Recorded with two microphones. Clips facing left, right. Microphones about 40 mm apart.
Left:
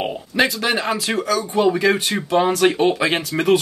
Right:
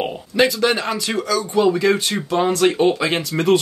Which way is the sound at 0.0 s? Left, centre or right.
Centre.